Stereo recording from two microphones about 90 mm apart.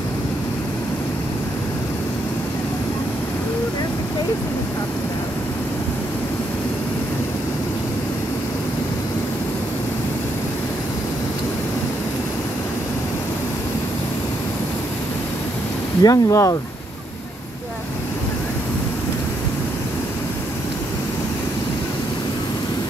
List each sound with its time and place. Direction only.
16.0 s speech: 40° left (ahead or behind)